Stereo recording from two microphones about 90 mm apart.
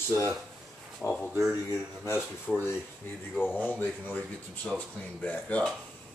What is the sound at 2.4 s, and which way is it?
Speech, 20° left (ahead or behind).